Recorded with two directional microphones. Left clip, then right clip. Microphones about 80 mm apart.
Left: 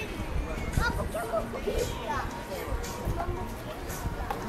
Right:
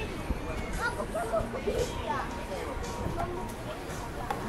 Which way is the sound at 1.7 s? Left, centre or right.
Left.